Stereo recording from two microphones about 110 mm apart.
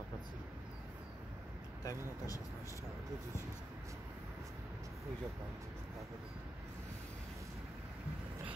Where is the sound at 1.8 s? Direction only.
30° left (ahead or behind).